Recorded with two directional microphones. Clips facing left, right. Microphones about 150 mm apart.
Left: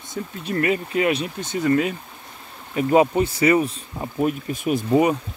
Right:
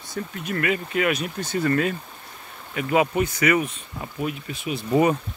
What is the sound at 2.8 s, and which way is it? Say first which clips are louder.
Speech: left 4 dB; 35° left (ahead or behind).